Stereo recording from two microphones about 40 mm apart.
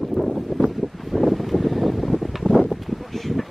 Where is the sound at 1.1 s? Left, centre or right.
Centre.